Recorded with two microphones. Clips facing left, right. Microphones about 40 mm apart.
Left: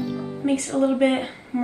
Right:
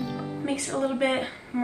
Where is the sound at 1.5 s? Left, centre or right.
Left.